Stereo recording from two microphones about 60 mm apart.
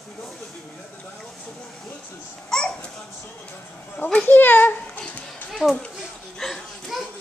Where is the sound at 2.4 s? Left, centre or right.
Centre.